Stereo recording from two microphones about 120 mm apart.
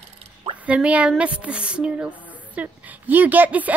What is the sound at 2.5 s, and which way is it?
Speech, 15° right (ahead or behind).